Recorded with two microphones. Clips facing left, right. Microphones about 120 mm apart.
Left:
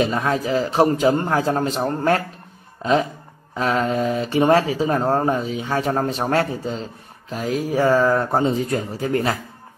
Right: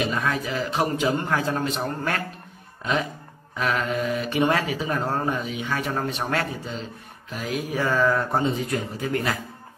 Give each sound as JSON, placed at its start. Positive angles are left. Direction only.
{"t": 0.0, "sound": "speech", "side_deg": 35}